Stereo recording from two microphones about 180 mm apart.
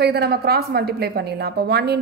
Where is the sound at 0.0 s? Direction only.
65° right (ahead or behind).